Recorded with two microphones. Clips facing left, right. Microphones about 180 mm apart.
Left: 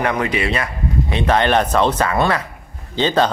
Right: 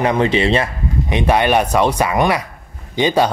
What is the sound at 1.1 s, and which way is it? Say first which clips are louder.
Speech: right 2 dB; 10° right (ahead or behind).